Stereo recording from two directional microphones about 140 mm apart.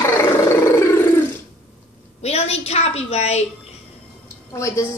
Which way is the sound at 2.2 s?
50° left (ahead or behind).